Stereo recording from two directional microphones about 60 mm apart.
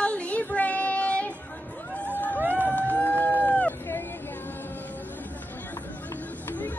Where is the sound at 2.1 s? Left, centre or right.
Left.